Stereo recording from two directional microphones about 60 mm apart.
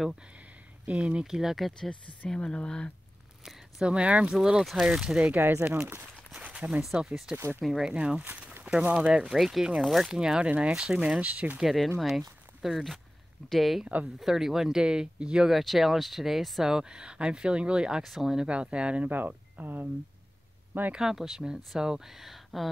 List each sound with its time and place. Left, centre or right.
0.8 s speech: centre
1.2 s speech: centre
1.8 s speech: centre
3.8 s speech: centre
4.4 s speech: centre
5.3 s speech: right
6.5 s a sound: centre
7.3 s speech: centre
8.2 s speech: right
9.3 s speech: centre; by 11.6 s right
11.6 s speech: centre
15.5 s speech: centre
19.0 s speech: right
20.9 s speech: centre